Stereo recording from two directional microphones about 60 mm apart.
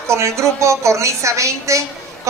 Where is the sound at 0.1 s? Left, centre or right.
Right.